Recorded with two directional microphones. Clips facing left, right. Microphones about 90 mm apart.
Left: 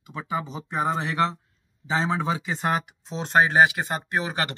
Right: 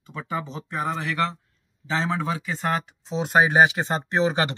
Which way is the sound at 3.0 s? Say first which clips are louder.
Right 1 dB; 5° right (ahead or behind).